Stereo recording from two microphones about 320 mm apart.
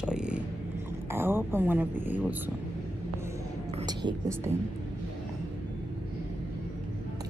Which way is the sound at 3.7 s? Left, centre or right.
Centre.